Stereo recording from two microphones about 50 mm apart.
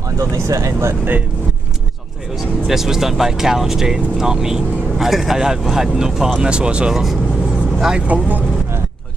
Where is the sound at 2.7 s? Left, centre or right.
Centre.